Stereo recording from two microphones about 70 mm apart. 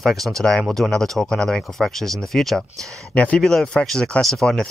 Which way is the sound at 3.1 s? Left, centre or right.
Centre.